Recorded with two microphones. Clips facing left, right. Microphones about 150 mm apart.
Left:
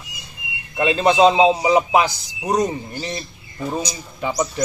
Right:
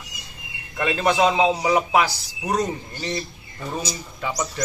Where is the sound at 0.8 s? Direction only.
20° left (ahead or behind).